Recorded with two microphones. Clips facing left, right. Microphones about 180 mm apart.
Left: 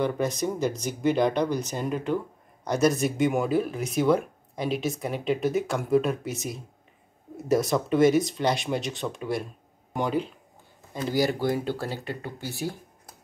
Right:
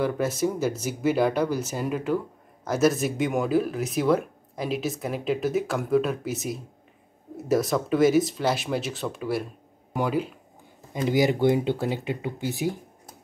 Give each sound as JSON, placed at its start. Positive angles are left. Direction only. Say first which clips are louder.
{"t": 0.0, "sound": "speech", "louder": "right 1 dB", "side_deg": -5}
{"t": 11.0, "sound": "speech", "louder": "right 3 dB", "side_deg": -20}